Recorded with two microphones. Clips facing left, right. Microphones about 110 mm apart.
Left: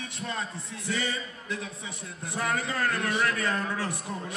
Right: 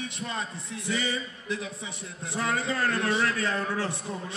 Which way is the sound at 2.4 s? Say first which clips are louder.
Right 1 dB; 25° right (ahead or behind).